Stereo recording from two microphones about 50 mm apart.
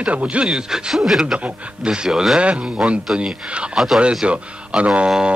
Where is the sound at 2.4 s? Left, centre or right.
Right.